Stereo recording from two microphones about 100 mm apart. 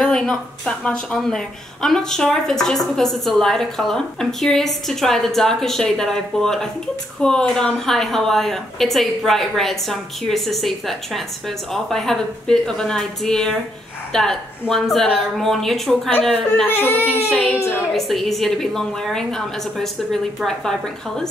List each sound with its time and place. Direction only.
0.0 s a woman's voice: 5° left (ahead or behind)
16.1 s speech: 15° left (ahead or behind)
17.9 s a woman's voice: centre (ahead or behind)